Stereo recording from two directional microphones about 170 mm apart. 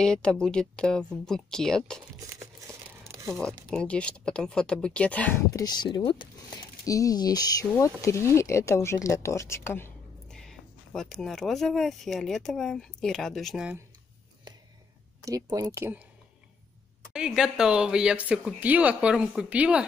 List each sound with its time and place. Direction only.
0.0 s speech: 5° left (ahead or behind)
3.3 s speech: 5° left (ahead or behind)
5.5 s speech: 25° left (ahead or behind)
10.3 s speech: 5° left (ahead or behind)
15.2 s speech: 20° right (ahead or behind)
17.1 s speech: 5° right (ahead or behind)